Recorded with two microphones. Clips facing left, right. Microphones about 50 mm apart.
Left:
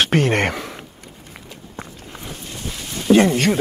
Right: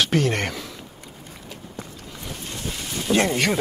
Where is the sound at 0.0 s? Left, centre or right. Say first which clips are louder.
Left 4 dB; left.